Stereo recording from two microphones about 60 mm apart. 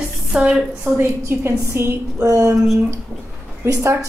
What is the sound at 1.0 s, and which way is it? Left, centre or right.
A woman's voice, right.